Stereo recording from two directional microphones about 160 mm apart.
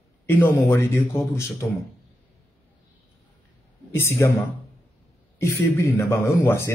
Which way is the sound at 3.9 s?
15° left (ahead or behind).